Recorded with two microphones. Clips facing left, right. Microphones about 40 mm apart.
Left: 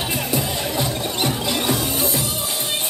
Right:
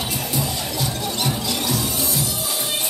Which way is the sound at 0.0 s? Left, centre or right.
Left.